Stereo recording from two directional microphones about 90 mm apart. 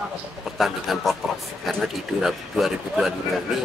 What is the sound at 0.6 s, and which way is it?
A man's voice, centre (ahead or behind).